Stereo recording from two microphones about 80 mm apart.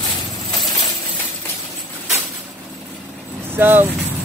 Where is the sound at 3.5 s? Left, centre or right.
Right.